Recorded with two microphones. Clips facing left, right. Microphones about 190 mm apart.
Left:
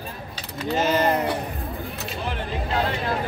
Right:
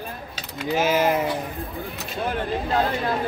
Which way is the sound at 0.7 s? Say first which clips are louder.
Right 1 dB; 5° right (ahead or behind).